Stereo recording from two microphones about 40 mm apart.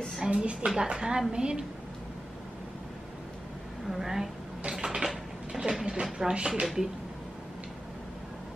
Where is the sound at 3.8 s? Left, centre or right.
Centre.